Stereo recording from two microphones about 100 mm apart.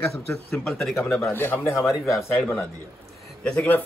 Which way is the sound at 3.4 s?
5° left (ahead or behind).